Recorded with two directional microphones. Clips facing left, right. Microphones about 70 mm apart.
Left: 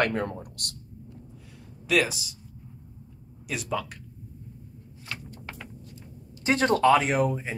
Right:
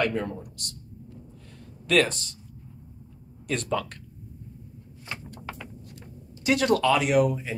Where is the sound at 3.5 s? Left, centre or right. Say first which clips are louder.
Right 3 dB; centre.